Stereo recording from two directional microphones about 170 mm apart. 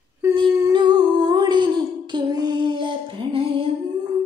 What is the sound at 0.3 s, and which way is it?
Humming, 25° right (ahead or behind).